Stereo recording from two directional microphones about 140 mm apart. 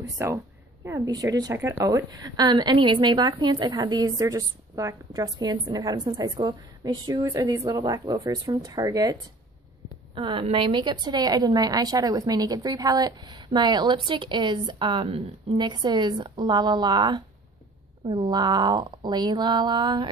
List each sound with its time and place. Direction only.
0.0 s a woman's voice: 20° right (ahead or behind)
10.1 s a woman's voice: 45° right (ahead or behind)